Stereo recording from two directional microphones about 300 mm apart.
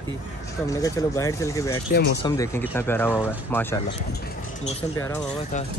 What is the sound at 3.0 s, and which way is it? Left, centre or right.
Speech, centre.